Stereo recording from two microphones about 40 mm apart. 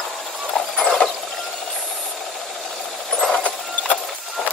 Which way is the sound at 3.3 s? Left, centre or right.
Left.